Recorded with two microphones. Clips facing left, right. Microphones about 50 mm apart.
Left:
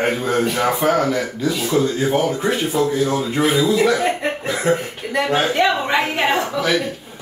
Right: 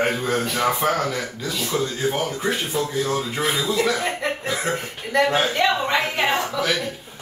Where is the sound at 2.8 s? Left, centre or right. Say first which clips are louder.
Left 6 dB; left.